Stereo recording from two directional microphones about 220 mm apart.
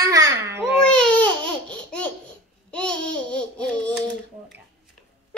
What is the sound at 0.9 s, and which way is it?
Baby cry, 5° left (ahead or behind).